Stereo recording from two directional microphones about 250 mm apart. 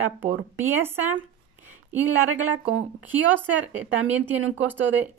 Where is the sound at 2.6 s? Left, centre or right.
Right.